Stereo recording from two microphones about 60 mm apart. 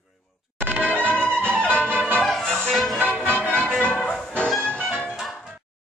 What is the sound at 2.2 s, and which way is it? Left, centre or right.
Music, centre.